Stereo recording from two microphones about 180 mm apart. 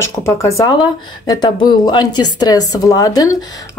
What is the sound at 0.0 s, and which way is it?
Speech, 15° left (ahead or behind).